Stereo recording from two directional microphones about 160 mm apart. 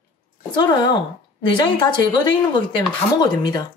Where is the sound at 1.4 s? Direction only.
30° left (ahead or behind).